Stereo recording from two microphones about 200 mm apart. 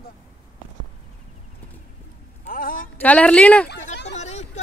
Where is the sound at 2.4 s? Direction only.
45° left (ahead or behind).